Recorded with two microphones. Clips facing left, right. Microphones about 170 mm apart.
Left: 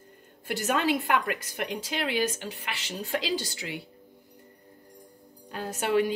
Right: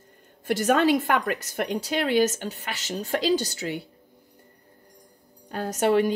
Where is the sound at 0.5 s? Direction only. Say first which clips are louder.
Right 6 dB; 45° right (ahead or behind).